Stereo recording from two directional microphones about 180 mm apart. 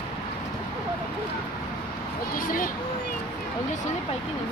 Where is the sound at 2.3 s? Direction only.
50° left (ahead or behind).